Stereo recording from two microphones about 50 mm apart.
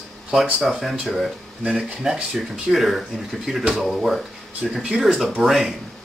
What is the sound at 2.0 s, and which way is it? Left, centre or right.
Speech, centre.